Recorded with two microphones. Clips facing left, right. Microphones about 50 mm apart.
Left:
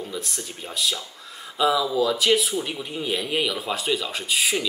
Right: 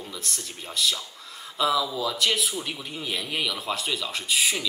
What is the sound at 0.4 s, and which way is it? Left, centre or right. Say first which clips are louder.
A man's voice: right 2 dB; centre.